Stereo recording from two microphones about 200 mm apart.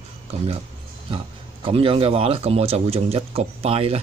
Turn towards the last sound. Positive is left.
turn(degrees=-30)  # may be behind; listen again after turning